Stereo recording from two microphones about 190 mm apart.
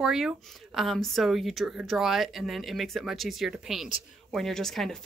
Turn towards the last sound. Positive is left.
turn(degrees=0)  # may be behind; listen again after turning